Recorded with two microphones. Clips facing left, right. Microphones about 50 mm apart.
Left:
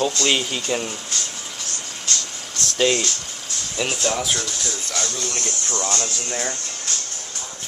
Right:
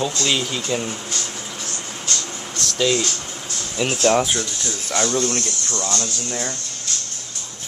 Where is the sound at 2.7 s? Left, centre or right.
Left.